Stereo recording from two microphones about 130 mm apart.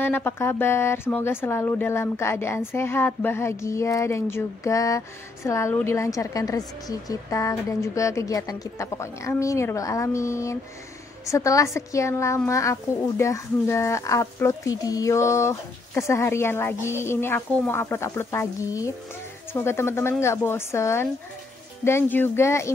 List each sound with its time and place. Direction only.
0.0 s a woman's voice: 15° left (ahead or behind)